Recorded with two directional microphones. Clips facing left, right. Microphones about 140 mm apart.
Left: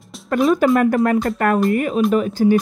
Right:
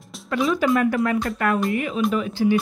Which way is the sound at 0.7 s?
50° left (ahead or behind).